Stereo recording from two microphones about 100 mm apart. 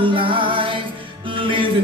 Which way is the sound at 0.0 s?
60° right (ahead or behind).